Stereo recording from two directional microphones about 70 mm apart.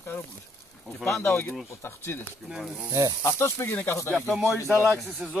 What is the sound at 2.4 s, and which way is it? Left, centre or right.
Speech, centre.